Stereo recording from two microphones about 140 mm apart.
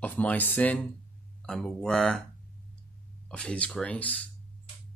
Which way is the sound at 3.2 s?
5° left (ahead or behind).